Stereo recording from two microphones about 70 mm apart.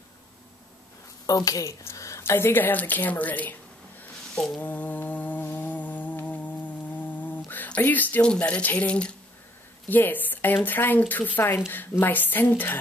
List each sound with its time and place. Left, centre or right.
1.2 s speech: left
1.9 s a sound: left
2.3 s speech: left
4.6 s mantra: left
8.3 s speech: centre